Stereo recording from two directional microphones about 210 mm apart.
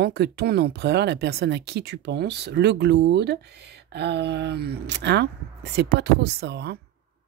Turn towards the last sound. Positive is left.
turn(degrees=-50)  # may be behind; listen again after turning